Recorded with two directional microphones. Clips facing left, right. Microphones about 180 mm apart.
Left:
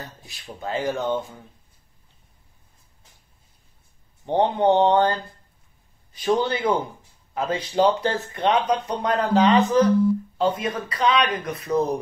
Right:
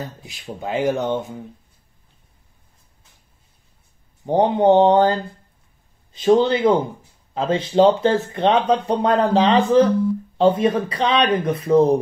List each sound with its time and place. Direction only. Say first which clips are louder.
0.0 s speech: right 7 dB; 20° right (ahead or behind)
4.3 s speech: right 4 dB; 20° right (ahead or behind)